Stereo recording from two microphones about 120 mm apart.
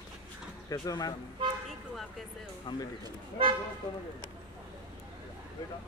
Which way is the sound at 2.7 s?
35° left (ahead or behind).